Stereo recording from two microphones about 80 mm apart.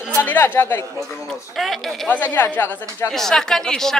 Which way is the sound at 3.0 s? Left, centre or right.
Centre.